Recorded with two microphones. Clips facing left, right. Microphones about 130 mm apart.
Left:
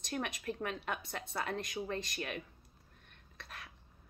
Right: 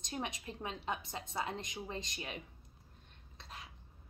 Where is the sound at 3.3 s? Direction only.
20° right (ahead or behind).